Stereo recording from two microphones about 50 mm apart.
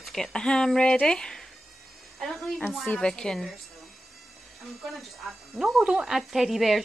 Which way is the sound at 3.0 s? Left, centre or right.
Centre.